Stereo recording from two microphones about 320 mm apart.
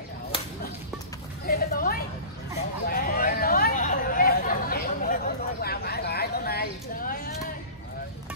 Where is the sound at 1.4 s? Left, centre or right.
Left.